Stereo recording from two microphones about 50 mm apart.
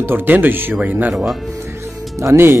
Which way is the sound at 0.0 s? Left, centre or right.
Right.